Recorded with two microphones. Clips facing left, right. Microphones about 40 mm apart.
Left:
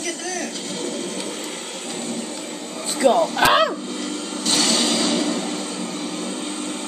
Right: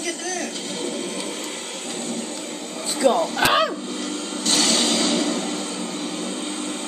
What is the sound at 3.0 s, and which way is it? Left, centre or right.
Speech, left.